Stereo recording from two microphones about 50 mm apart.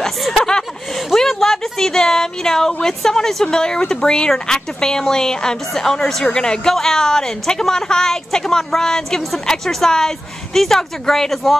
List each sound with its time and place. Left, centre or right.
0.0 s chuckle: centre
1.1 s a woman's voice: centre